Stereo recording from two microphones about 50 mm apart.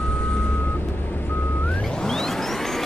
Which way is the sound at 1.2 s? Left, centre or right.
Left.